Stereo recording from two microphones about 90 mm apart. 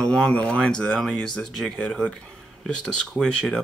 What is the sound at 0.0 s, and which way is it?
Speech, 10° left (ahead or behind).